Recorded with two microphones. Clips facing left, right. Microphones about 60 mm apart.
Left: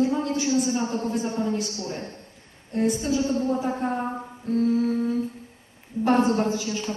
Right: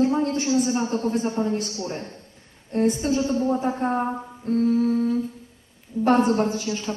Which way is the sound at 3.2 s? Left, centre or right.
Right.